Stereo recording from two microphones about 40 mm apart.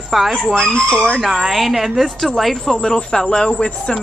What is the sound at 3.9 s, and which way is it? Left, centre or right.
Chicken, centre.